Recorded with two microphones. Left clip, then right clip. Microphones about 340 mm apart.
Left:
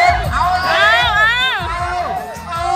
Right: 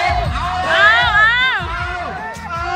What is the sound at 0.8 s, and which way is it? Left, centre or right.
Music, centre.